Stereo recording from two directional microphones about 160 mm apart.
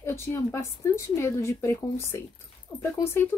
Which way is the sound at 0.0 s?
15° left (ahead or behind).